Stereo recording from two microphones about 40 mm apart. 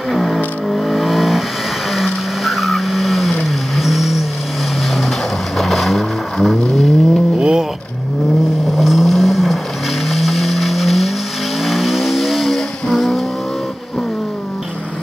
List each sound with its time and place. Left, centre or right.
0.1 s a sound: centre
0.7 s vehicle: centre
2.4 s vehicle: centre
5.6 s vehicle: centre
7.3 s vehicle: right
8.7 s vehicle: centre